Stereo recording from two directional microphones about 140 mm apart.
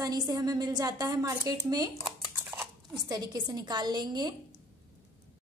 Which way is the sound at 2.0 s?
5° right (ahead or behind).